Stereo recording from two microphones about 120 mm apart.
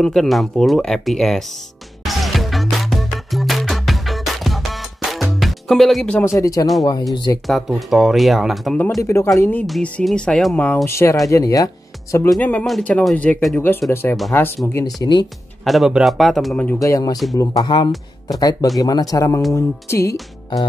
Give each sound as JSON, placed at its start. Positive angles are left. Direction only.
{"t": 0.0, "sound": "speech", "side_deg": 5}
{"t": 2.0, "sound": "music", "side_deg": 0}
{"t": 6.2, "sound": "speech", "side_deg": 25}
{"t": 7.4, "sound": "speech", "side_deg": 0}
{"t": 9.0, "sound": "speech", "side_deg": 25}
{"t": 9.7, "sound": "speech", "side_deg": 5}
{"t": 10.9, "sound": "speech", "side_deg": 20}
{"t": 12.4, "sound": "speech", "side_deg": 15}
{"t": 15.0, "sound": "speech", "side_deg": 40}
{"t": 15.6, "sound": "speech", "side_deg": 0}
{"t": 16.7, "sound": "speech", "side_deg": 25}